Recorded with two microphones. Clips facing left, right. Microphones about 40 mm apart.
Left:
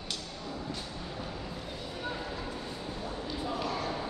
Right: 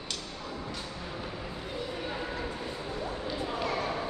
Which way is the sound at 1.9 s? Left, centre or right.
Centre.